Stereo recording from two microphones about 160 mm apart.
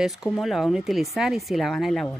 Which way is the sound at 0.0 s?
Centre (ahead or behind).